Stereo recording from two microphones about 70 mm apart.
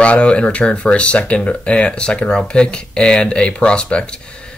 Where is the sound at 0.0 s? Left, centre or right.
Centre.